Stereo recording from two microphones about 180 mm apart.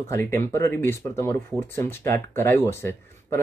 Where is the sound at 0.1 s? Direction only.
15° left (ahead or behind).